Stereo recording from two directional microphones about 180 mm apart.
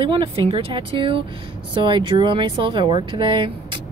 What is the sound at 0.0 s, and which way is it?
Speech, 30° right (ahead or behind).